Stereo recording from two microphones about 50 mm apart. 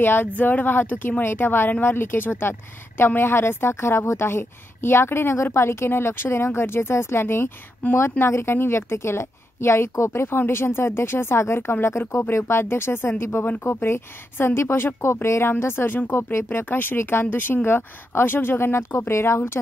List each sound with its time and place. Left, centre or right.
0.0 s a woman's voice: left
7.8 s speech: left
8.2 s a woman's voice: left
15.6 s a woman's voice: left
16.4 s speech: left
16.9 s a woman's voice: left